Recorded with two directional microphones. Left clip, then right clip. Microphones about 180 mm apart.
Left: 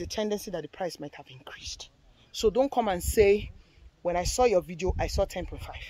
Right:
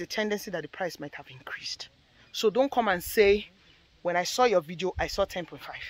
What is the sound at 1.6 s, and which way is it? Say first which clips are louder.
Speech: left 1 dB; 40° right (ahead or behind).